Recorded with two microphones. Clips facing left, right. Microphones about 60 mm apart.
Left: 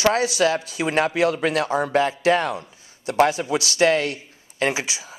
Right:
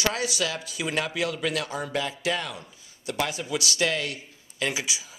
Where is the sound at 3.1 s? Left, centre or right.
Left.